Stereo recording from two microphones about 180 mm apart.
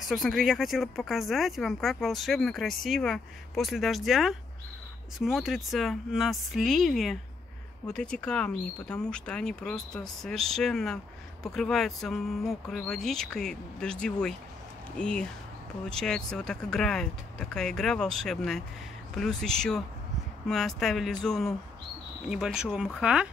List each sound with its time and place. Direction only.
0.1 s speech: centre (ahead or behind)